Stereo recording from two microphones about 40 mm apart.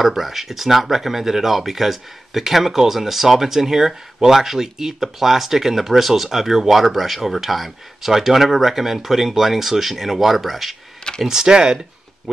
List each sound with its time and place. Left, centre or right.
0.0 s speech: centre
11.2 s speech: centre